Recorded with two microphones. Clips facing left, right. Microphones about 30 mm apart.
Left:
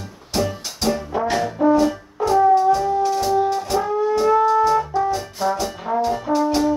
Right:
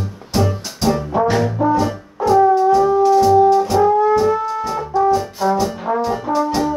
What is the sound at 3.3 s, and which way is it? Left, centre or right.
Brass instrument, centre.